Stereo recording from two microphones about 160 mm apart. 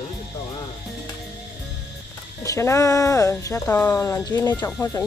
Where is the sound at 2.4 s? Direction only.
20° left (ahead or behind).